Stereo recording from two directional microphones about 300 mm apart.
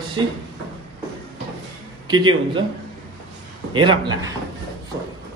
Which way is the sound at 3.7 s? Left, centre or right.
Centre.